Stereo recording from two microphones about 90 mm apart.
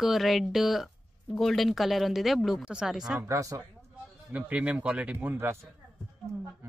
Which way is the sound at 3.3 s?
40° right (ahead or behind).